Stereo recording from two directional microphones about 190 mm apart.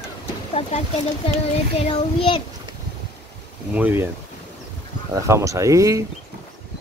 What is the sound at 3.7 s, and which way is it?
Speech, 10° right (ahead or behind).